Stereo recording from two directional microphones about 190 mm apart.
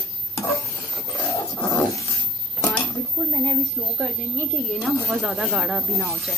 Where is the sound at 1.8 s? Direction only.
Centre (ahead or behind).